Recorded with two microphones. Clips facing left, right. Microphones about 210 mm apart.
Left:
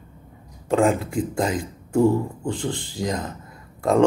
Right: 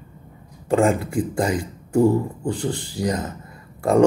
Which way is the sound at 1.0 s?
5° right (ahead or behind).